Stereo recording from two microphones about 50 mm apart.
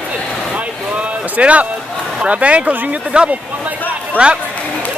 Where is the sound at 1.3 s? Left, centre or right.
Right.